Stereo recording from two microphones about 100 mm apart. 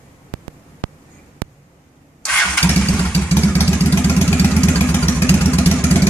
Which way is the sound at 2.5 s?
15° left (ahead or behind).